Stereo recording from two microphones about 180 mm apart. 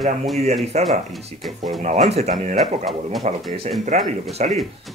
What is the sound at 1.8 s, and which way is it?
Speech, 40° right (ahead or behind).